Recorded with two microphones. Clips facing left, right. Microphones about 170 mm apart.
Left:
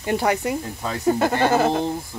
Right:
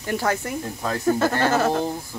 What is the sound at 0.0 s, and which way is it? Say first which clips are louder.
Speech: left 3 dB; 15° left (ahead or behind).